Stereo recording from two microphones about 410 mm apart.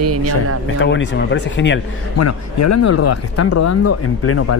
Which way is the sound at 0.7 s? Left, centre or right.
Left.